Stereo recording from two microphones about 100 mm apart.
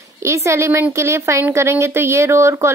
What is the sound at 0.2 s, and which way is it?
Speech, 30° right (ahead or behind).